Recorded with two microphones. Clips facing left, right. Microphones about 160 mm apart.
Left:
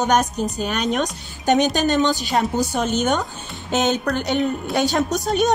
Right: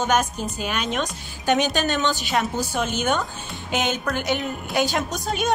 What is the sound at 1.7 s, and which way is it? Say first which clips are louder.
Speech: left 4 dB; 45° left (ahead or behind).